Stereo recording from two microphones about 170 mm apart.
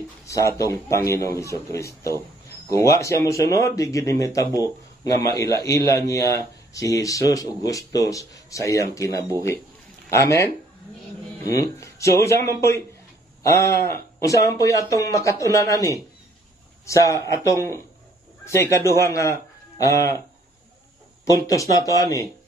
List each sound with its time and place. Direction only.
0.3 s a man's voice: 20° left (ahead or behind)
21.3 s speech: 20° left (ahead or behind)